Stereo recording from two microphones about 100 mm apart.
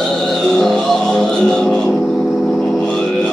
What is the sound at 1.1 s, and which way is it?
Music, 5° left (ahead or behind).